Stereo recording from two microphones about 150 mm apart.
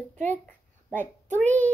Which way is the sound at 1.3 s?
10° left (ahead or behind).